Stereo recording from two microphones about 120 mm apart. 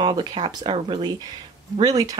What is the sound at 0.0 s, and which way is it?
Speech, 35° right (ahead or behind).